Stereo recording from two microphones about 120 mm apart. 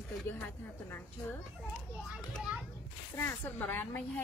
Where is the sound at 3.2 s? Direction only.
15° left (ahead or behind).